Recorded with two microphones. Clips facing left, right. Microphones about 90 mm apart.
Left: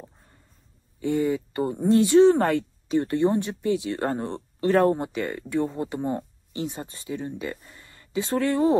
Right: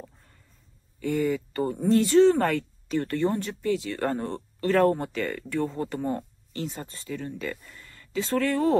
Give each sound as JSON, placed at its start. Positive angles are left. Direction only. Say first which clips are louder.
{"t": 0.9, "sound": "speech", "louder": "left 2 dB", "side_deg": 25}